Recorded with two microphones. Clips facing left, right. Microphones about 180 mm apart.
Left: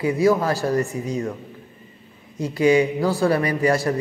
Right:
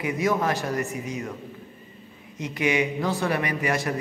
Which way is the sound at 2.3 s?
35° left (ahead or behind).